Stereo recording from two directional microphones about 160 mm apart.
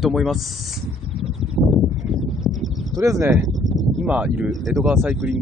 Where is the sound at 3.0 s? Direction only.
20° right (ahead or behind).